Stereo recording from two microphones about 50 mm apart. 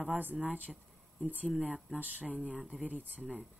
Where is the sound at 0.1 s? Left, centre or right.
Right.